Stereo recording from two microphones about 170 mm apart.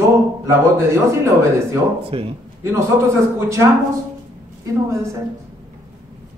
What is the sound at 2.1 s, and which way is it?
Speech, 30° right (ahead or behind).